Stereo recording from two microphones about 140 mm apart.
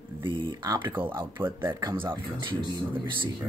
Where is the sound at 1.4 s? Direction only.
15° right (ahead or behind).